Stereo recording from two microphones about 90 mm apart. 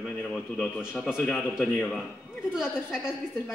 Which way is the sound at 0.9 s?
15° left (ahead or behind).